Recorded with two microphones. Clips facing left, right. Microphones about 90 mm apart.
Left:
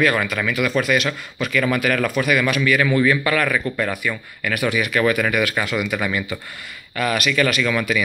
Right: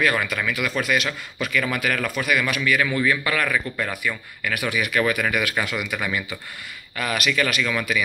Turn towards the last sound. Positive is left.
turn(degrees=0)  # may be behind; listen again after turning